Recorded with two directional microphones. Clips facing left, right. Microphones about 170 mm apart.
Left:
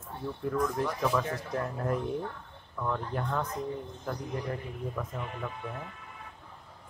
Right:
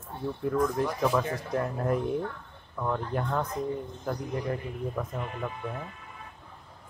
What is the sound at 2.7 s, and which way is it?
Speech, 30° right (ahead or behind).